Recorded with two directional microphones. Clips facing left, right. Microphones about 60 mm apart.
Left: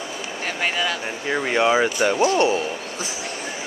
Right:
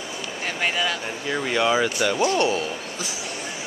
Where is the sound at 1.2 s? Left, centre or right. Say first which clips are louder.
Left 3 dB; left.